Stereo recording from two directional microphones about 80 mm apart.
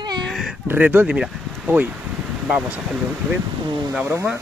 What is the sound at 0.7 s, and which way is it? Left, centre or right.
Speech, right.